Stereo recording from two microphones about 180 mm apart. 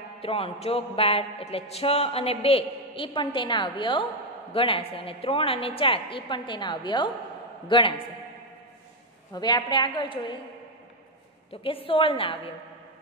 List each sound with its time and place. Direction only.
0.2 s a sound: 30° left (ahead or behind)
7.6 s a woman's voice: 25° left (ahead or behind)
9.3 s a woman's voice: 25° left (ahead or behind)
11.6 s a woman's voice: 30° left (ahead or behind)